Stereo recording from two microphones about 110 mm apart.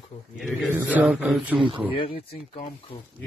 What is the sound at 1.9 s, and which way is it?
Speech, 60° left (ahead or behind).